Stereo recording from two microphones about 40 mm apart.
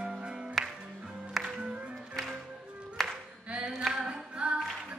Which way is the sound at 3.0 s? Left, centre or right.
Centre.